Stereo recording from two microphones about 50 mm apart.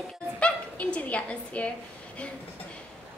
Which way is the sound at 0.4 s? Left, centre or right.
Left.